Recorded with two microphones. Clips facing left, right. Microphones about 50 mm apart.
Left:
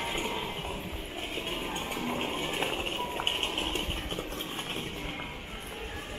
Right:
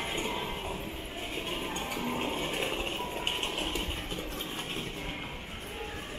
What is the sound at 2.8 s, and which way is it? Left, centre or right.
Music, centre.